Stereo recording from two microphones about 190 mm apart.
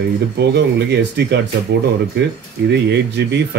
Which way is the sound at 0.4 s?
65° right (ahead or behind).